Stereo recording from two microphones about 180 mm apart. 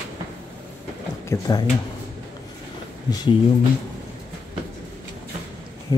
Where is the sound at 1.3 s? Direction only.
20° left (ahead or behind).